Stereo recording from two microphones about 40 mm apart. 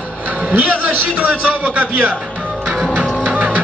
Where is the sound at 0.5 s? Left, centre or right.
Right.